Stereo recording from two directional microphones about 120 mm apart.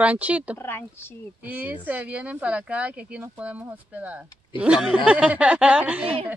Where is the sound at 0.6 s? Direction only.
20° left (ahead or behind).